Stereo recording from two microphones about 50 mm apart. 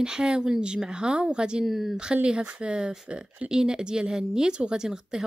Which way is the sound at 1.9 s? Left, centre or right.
Centre.